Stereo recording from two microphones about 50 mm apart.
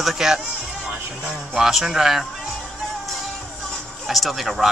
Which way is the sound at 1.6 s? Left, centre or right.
Centre.